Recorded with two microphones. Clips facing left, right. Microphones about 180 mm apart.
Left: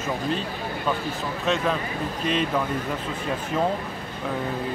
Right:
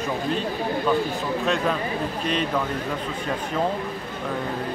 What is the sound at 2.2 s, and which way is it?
Speech, centre (ahead or behind).